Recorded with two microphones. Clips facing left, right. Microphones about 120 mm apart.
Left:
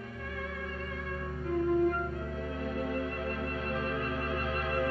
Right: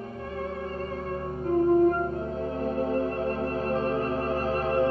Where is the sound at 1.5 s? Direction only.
35° right (ahead or behind).